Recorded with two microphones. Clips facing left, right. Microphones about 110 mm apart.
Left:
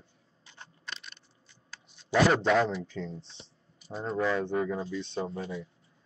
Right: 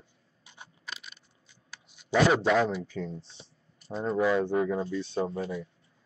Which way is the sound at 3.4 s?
Centre (ahead or behind).